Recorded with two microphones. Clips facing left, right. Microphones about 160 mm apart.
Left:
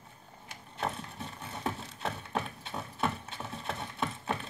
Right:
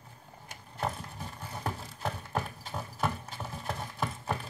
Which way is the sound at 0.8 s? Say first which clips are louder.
Right 1 dB; centre (ahead or behind).